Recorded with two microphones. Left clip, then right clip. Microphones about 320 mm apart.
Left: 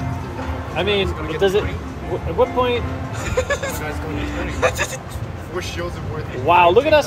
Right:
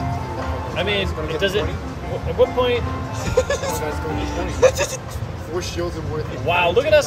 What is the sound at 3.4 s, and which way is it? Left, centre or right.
Speech, centre.